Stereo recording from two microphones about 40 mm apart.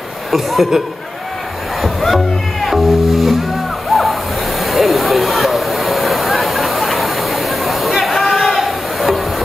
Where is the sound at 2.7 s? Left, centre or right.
Centre.